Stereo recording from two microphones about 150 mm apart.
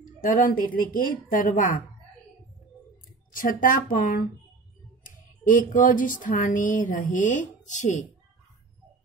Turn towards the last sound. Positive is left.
turn(degrees=55)  # may be behind; listen again after turning